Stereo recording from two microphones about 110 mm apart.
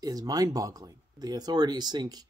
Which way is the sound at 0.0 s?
35° right (ahead or behind).